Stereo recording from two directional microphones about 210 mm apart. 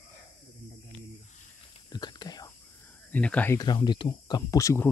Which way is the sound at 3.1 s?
5° left (ahead or behind).